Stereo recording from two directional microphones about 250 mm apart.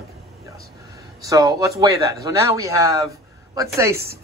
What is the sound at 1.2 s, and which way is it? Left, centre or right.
Speech, centre.